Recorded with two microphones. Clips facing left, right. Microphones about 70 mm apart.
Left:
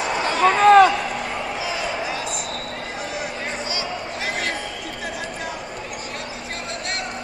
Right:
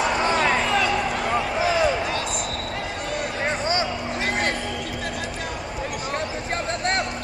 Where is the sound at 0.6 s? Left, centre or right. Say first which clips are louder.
Left 10 dB; left.